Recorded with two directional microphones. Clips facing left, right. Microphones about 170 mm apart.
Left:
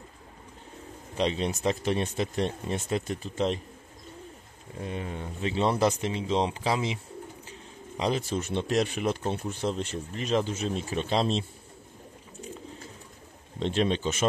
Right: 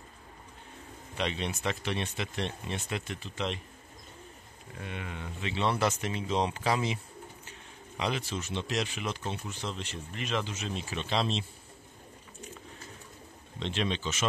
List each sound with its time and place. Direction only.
1.1 s speech: 35° left (ahead or behind)
4.7 s speech: 35° left (ahead or behind)
8.0 s speech: 40° left (ahead or behind)
13.6 s speech: 45° left (ahead or behind)